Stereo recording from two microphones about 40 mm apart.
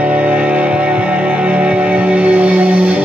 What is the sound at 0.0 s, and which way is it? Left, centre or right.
Music, right.